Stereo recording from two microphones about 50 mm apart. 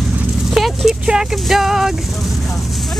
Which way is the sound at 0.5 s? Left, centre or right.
Centre.